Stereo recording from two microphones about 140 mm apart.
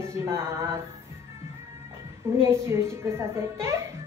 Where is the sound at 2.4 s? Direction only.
20° right (ahead or behind).